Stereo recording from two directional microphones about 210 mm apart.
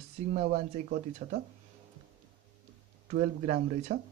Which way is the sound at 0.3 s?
35° right (ahead or behind).